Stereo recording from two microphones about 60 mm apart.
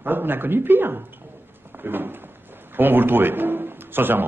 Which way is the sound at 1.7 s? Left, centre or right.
Right.